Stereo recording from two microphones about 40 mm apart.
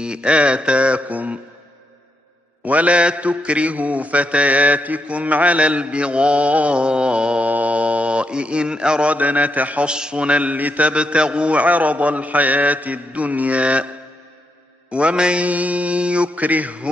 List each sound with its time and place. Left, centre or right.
0.0 s a sound: right
2.6 s a man's voice: right
7.5 s mantra: right
9.1 s a man's voice: right
9.8 s a man's voice: right
10.9 s a man's voice: right
14.9 s a sound: right
15.4 s a man's voice: right